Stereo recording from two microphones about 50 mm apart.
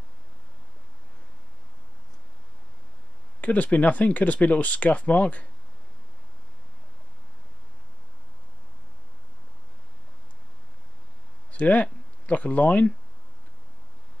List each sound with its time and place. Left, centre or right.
3.3 s speech: left
11.5 s speech: left